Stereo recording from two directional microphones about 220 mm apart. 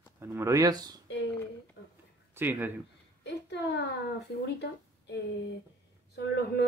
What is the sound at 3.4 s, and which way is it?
Speech, 50° left (ahead or behind).